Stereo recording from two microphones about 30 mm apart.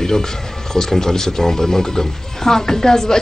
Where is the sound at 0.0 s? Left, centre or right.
Centre.